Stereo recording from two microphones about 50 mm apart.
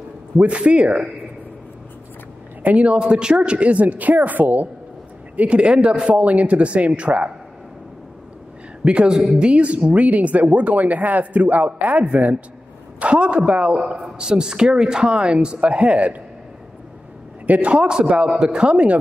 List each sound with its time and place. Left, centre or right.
0.4 s speech: right
2.6 s speech: right
8.8 s speech: centre
17.5 s speech: right